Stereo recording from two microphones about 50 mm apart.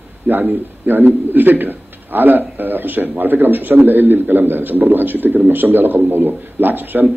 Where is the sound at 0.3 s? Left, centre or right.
Right.